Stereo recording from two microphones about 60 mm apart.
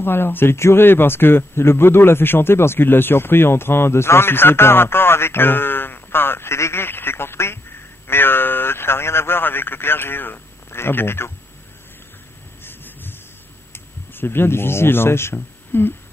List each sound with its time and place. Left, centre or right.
0.0 s a man's voice: left
12.6 s a sound: left
14.1 s a man's voice: left